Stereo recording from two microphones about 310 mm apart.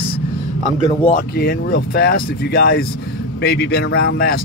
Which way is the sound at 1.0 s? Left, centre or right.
Left.